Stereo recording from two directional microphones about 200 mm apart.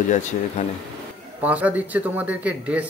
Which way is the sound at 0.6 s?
35° left (ahead or behind).